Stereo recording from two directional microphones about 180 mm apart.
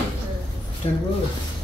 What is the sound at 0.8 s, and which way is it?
Speech, 35° left (ahead or behind).